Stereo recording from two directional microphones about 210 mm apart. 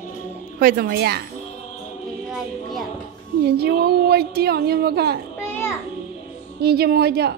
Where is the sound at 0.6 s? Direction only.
45° right (ahead or behind).